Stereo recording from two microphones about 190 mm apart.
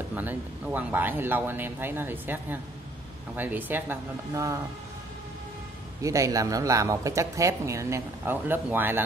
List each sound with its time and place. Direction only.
0.1 s speech: 10° right (ahead or behind)
6.0 s speech: 15° right (ahead or behind)